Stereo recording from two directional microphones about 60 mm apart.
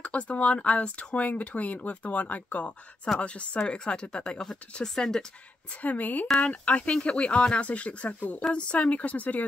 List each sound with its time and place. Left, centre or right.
0.0 s speech: left
5.7 s speech: left